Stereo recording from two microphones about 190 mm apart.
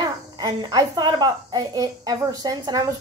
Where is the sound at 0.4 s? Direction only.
20° right (ahead or behind).